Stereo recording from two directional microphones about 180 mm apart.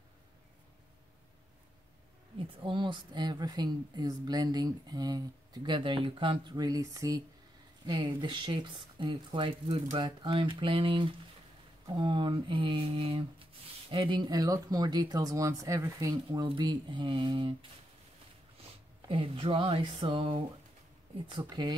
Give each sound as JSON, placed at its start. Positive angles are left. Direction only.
{"t": 2.3, "sound": "a woman's voice", "side_deg": -25}
{"t": 19.0, "sound": "a woman's voice", "side_deg": -30}